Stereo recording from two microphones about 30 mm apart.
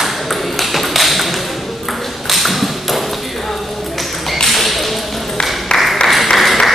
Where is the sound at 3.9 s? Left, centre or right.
Centre.